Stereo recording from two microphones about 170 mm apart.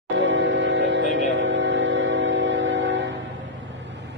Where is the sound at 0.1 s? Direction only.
90° right.